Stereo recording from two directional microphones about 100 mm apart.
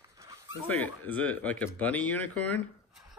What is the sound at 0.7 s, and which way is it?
Speech, 15° left (ahead or behind).